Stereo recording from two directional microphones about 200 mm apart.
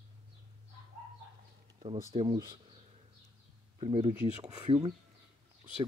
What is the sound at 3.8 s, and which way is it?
Speech, 25° right (ahead or behind).